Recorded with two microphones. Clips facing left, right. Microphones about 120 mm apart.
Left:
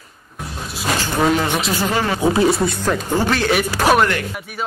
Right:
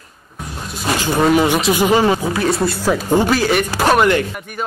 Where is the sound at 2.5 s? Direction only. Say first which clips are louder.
Right 1 dB; centre (ahead or behind).